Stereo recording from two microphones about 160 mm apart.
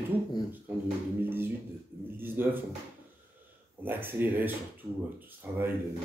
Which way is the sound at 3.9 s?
10° right (ahead or behind).